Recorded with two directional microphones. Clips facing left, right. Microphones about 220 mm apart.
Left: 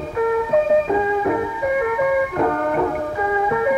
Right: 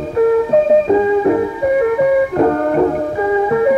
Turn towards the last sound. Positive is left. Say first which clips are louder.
# right 6 dB
turn(degrees=-35)  # may be behind; listen again after turning